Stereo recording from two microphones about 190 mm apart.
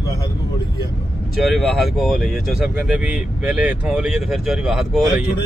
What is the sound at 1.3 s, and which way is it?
Speech, centre (ahead or behind).